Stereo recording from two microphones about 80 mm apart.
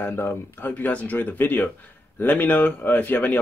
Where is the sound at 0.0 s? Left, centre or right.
Left.